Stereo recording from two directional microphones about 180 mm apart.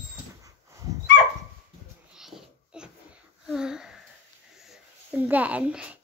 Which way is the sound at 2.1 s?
5° right (ahead or behind).